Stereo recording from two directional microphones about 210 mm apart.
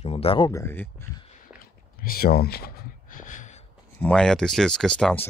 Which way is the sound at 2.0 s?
45° left (ahead or behind).